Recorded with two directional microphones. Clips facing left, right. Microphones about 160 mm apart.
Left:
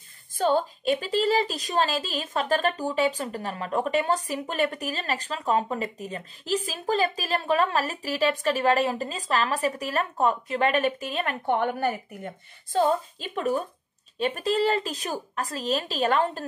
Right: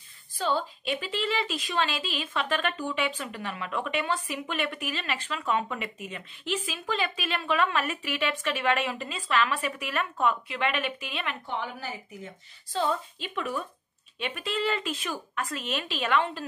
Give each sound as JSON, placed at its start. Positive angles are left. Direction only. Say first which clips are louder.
{"t": 0.4, "sound": "a woman's voice", "louder": "left 5 dB", "side_deg": 45}
{"t": 11.4, "sound": "a woman's voice", "louder": "left 10 dB", "side_deg": 60}